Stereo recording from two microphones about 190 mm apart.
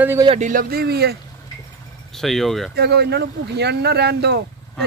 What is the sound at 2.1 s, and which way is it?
Speech, centre (ahead or behind).